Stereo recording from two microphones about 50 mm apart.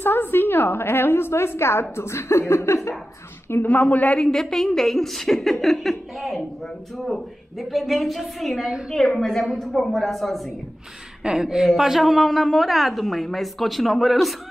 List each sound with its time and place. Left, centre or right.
0.0 s a woman's voice: left
3.6 s speech: left
4.2 s a woman's voice: centre
8.9 s a woman's voice: centre
11.2 s a woman's voice: centre